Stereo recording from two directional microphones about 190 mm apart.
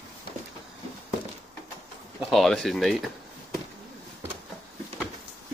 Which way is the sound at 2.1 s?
Centre (ahead or behind).